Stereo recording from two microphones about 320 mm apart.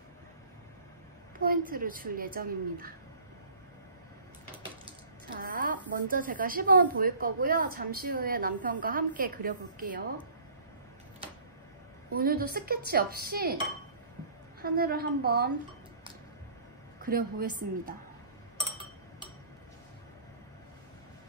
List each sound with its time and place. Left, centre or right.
1.4 s a woman's voice: right
5.3 s a woman's voice: right
12.1 s a woman's voice: right
14.6 s a woman's voice: right
17.0 s a woman's voice: right